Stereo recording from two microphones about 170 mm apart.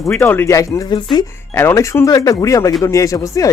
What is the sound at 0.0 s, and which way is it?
Speech, 15° left (ahead or behind).